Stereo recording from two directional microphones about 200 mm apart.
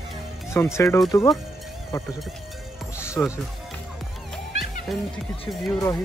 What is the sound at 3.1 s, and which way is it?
Speech, 15° left (ahead or behind).